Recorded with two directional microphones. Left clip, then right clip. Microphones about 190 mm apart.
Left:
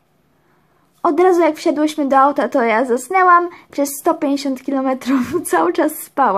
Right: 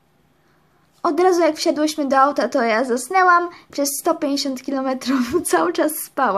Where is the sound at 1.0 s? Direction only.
15° left (ahead or behind).